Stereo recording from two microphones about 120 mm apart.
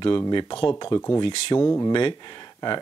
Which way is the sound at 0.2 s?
35° left (ahead or behind).